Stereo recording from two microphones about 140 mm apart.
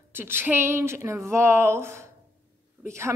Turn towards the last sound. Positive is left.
turn(degrees=-20)  # may be behind; listen again after turning